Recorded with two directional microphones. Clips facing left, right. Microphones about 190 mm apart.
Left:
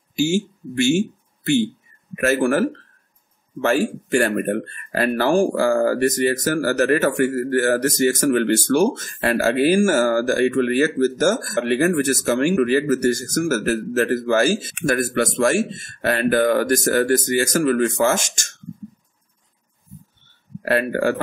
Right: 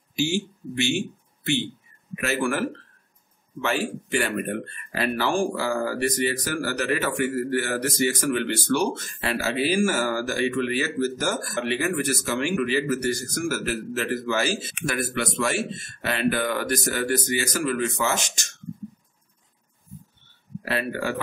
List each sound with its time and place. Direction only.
0.1 s speech: 45° left (ahead or behind)
20.6 s speech: 50° left (ahead or behind)